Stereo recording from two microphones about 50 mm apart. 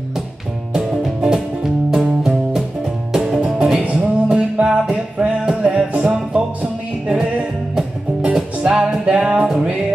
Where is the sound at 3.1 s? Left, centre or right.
Centre.